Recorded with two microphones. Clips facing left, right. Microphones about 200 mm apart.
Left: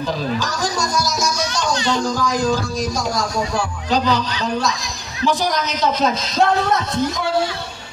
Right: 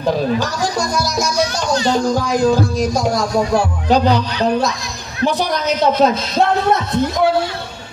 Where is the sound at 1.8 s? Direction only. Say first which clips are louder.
Right 6 dB; 40° right (ahead or behind).